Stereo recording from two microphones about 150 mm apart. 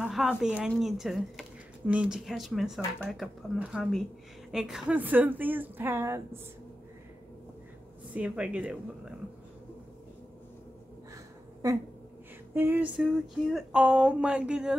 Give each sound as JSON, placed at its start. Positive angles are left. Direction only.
{"t": 0.0, "sound": "speech", "side_deg": -5}
{"t": 8.1, "sound": "speech", "side_deg": -10}
{"t": 11.6, "sound": "speech", "side_deg": -20}